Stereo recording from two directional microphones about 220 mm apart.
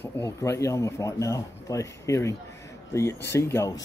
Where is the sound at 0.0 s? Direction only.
10° left (ahead or behind).